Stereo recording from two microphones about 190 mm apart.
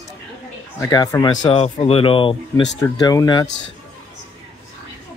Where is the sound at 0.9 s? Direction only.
20° left (ahead or behind).